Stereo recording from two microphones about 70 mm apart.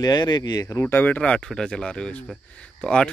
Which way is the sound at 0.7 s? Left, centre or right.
Left.